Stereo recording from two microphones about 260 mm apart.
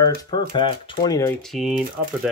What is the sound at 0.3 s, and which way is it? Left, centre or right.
Speech, centre.